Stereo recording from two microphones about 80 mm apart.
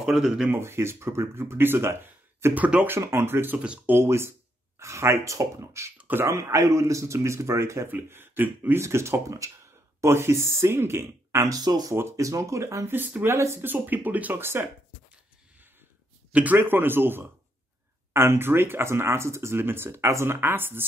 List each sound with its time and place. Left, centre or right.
0.0 s speech: centre
0.5 s speech: right
2.5 s speech: centre
2.9 s speech: right
3.5 s speech: centre
3.9 s speech: right
5.9 s a sound: right
6.2 s speech: right
8.8 s speech: right
11.5 s speech: right
11.9 s speech: right
16.3 s speech: centre